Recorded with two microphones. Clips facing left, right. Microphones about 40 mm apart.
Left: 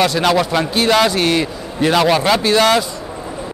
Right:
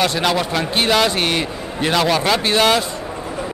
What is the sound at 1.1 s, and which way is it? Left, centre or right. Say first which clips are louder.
Speech: left 3 dB; right.